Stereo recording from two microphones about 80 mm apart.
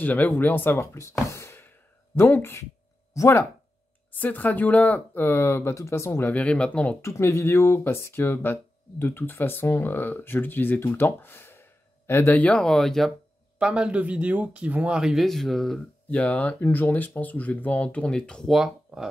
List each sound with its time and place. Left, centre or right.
0.0 s speech: left
0.7 s speech: left
4.1 s speech: left
6.3 s speech: centre
7.0 s speech: left; by 13.1 s centre
13.6 s speech: centre
16.1 s speech: centre
18.9 s a sound: centre